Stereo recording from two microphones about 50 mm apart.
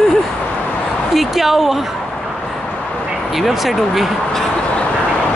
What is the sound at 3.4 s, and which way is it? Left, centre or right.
Speech, centre.